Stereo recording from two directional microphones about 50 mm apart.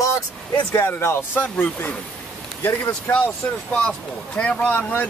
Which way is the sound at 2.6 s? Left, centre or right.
Left.